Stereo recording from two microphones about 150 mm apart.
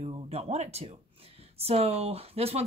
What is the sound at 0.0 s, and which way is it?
Speech, 45° right (ahead or behind).